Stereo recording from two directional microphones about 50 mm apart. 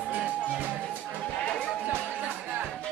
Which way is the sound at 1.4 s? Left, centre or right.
Left.